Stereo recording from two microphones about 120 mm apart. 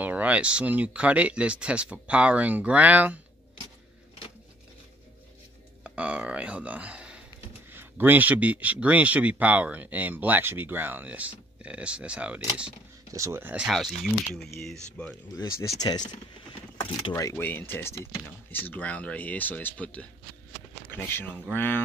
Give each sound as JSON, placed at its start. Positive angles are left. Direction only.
{"t": 0.0, "sound": "speech", "side_deg": -15}
{"t": 5.9, "sound": "speech", "side_deg": -10}
{"t": 13.1, "sound": "speech", "side_deg": -25}
{"t": 13.6, "sound": "speech", "side_deg": 0}
{"t": 15.3, "sound": "speech", "side_deg": 30}
{"t": 17.1, "sound": "speech", "side_deg": 25}